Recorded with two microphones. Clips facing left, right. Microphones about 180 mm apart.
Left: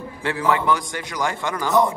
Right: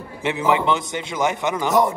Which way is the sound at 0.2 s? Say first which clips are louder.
Right 2 dB; 20° right (ahead or behind).